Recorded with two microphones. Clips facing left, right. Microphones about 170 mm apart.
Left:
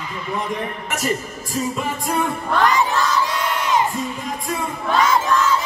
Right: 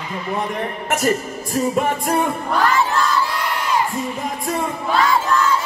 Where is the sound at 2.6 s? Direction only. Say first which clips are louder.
Even; 20° left (ahead or behind).